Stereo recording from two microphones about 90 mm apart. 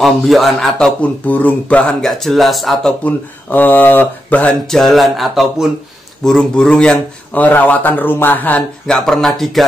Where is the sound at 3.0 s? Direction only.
20° left (ahead or behind).